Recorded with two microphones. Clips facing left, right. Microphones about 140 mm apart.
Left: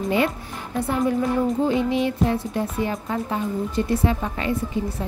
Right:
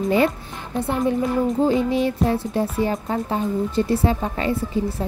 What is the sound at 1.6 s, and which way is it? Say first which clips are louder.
Speech: right 2 dB; 35° right (ahead or behind).